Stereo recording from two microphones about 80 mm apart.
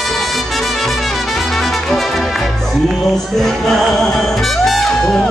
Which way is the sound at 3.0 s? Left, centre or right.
Centre.